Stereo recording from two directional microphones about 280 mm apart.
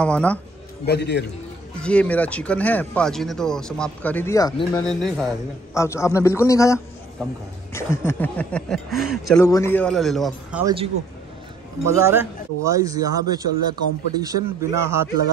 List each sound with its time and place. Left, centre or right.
0.0 s speech: centre
0.8 s a man's voice: left
1.8 s speech: centre
4.8 s a man's voice: centre
10.6 s speech: centre